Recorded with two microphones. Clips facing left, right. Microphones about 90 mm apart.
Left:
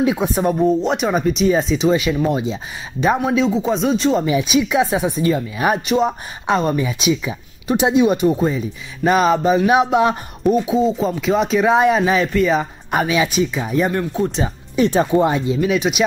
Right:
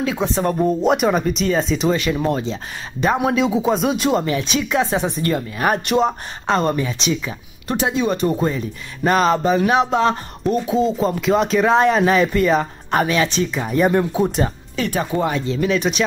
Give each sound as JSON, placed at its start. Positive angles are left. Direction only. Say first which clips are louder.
{"t": 0.0, "sound": "speech", "louder": "left 3 dB", "side_deg": 15}
{"t": 0.7, "sound": "speech", "louder": "right 1 dB", "side_deg": 0}
{"t": 4.2, "sound": "speech", "louder": "left 4 dB", "side_deg": 10}
{"t": 13.8, "sound": "speech", "louder": "right 3 dB", "side_deg": -10}
{"t": 14.8, "sound": "speech", "louder": "left 6 dB", "side_deg": 25}